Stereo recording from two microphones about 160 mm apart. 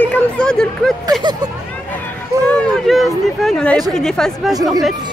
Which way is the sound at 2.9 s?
Centre (ahead or behind).